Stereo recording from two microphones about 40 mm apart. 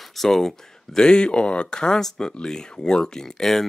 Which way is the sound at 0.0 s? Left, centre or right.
Centre.